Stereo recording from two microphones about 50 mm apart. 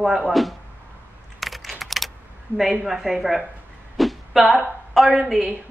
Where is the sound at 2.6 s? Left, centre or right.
Centre.